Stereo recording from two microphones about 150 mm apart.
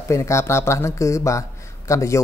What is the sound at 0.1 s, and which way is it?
Speech, 20° left (ahead or behind).